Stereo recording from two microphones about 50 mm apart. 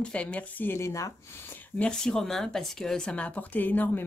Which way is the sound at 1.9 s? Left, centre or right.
Centre.